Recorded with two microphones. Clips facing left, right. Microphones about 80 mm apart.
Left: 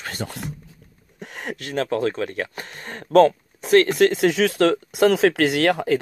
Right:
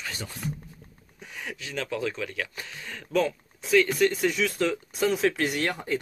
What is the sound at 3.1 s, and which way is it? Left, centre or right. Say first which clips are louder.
Speech: left 11 dB; left.